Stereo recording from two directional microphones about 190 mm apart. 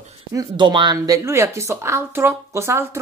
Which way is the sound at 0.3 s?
20° right (ahead or behind).